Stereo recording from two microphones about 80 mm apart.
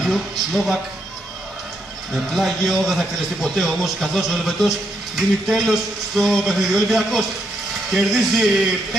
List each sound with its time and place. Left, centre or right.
0.0 s speech: centre
2.1 s speech: centre